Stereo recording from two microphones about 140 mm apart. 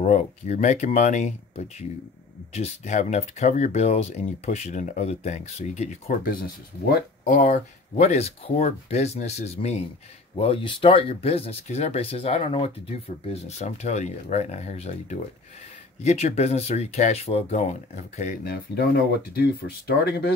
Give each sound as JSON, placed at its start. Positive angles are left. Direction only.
{"t": 0.0, "sound": "speech", "side_deg": 55}
{"t": 6.2, "sound": "speech", "side_deg": 90}
{"t": 10.3, "sound": "speech", "side_deg": 40}
{"t": 13.3, "sound": "speech", "side_deg": 50}